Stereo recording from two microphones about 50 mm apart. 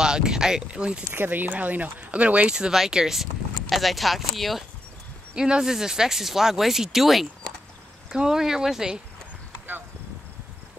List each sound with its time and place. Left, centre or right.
0.0 s speech: centre
1.1 s speech: right
2.5 s speech: centre
5.3 s speech: centre